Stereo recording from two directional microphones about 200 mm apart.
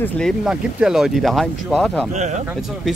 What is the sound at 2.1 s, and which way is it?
Speech, 35° right (ahead or behind).